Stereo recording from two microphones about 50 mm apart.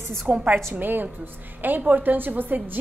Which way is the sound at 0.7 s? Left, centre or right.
Right.